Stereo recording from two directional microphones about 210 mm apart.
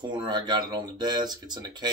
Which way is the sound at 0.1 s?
20° right (ahead or behind).